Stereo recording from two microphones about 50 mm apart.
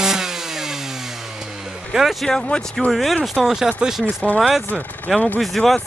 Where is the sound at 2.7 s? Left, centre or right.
Centre.